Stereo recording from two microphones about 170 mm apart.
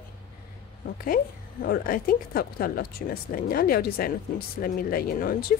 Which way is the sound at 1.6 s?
60° left (ahead or behind).